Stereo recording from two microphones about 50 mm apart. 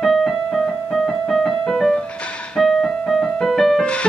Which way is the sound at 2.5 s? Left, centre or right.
Centre.